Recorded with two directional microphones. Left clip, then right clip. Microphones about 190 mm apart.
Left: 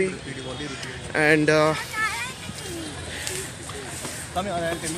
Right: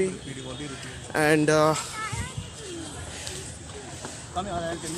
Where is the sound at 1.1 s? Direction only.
20° right (ahead or behind).